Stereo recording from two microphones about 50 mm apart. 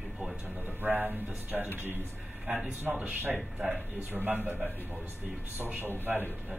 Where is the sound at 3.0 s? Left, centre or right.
Right.